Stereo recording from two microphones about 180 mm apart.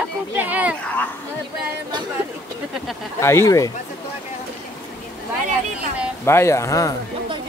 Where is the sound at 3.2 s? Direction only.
15° left (ahead or behind).